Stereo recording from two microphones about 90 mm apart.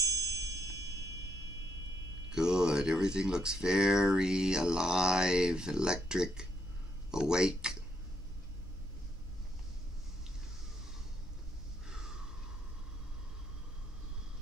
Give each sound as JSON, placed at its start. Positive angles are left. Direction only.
{"t": 0.0, "sound": "tubular bells", "side_deg": -40}
{"t": 2.3, "sound": "speech", "side_deg": -10}
{"t": 11.9, "sound": "a sound", "side_deg": -5}